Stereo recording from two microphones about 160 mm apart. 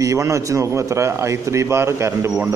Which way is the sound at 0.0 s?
20° right (ahead or behind).